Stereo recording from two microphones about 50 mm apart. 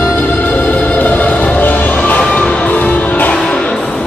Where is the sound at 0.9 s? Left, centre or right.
Left.